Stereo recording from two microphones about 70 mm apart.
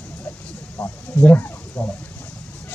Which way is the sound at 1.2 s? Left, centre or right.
Left.